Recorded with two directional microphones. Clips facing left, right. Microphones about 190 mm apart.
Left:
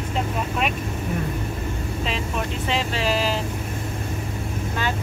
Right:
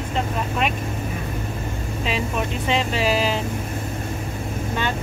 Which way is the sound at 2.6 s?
5° right (ahead or behind).